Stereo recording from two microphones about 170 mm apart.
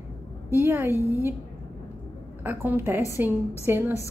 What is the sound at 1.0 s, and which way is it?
Speech, 20° left (ahead or behind).